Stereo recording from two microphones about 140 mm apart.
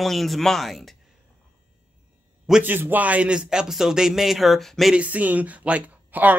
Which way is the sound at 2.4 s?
10° right (ahead or behind).